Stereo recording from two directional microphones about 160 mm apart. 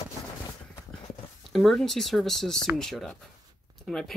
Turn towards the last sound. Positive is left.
turn(degrees=0)  # may be behind; listen again after turning